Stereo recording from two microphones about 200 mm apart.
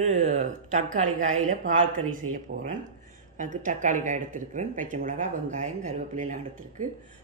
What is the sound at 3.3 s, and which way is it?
Speech, 40° right (ahead or behind).